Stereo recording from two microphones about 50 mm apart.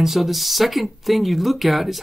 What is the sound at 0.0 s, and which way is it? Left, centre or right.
Speech, centre.